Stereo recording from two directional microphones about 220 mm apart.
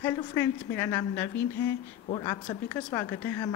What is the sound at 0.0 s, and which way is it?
Speech, 10° left (ahead or behind).